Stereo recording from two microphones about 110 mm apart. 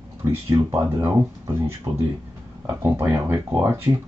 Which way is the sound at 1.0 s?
25° right (ahead or behind).